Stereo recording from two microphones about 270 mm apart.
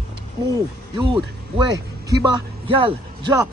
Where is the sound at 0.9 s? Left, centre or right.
Centre.